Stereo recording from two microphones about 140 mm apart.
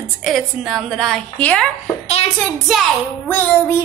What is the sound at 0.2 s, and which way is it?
A woman's voice, centre (ahead or behind).